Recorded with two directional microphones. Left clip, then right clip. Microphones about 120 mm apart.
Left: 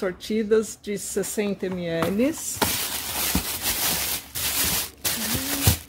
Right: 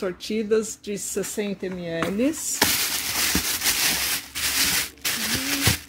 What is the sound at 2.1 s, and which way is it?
Speech, 10° right (ahead or behind).